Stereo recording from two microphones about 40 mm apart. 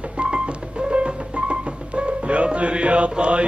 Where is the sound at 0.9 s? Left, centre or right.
Right.